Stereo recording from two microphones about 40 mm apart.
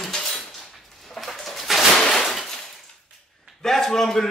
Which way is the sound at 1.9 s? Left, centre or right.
Centre.